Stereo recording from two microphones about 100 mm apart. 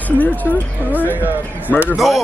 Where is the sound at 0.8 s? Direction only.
20° right (ahead or behind).